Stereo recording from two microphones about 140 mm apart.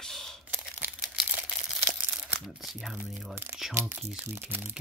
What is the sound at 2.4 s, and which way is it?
Speech, centre (ahead or behind).